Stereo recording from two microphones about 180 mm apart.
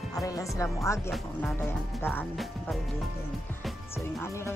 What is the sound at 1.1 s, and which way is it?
Speech, centre (ahead or behind).